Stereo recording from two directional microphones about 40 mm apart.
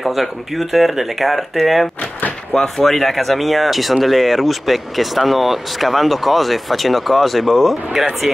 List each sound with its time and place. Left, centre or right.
0.0 s speech: centre